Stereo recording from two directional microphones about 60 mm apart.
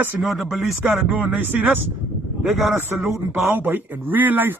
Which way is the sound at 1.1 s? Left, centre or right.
Right.